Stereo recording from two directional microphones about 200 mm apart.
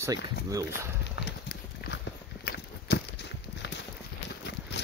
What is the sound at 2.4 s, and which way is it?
Walk, 55° left (ahead or behind).